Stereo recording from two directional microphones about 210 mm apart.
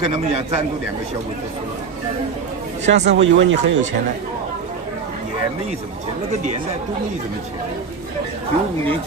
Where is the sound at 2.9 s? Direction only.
60° right (ahead or behind).